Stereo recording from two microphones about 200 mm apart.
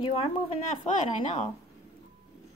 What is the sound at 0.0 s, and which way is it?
A woman's voice, 25° left (ahead or behind).